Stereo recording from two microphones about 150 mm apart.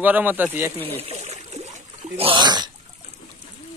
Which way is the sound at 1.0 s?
45° right (ahead or behind).